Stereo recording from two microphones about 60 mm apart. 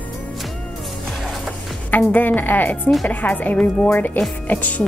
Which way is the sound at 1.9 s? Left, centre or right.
Left.